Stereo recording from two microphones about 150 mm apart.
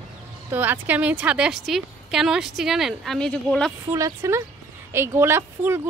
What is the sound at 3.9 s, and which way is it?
A woman's voice, 20° right (ahead or behind).